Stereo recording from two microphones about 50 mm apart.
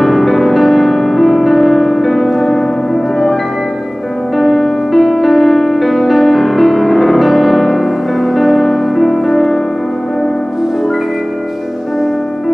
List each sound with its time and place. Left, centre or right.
0.0 s music: centre
4.4 s music: centre